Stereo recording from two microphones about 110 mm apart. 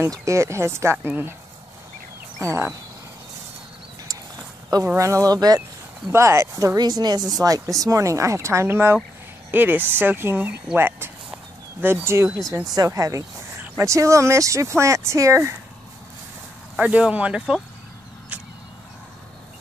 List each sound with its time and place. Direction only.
0.0 s speech: 30° right (ahead or behind)
4.9 s speech: 25° right (ahead or behind)
6.0 s speech: 25° right (ahead or behind)
16.7 s speech: 10° right (ahead or behind)
18.3 s a sound: 15° right (ahead or behind)